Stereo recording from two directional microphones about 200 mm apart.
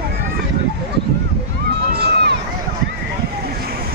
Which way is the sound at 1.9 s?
50° right (ahead or behind).